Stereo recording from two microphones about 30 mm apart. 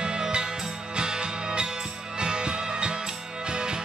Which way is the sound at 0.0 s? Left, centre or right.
Right.